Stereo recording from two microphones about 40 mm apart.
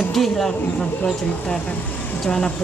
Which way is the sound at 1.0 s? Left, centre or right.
Left.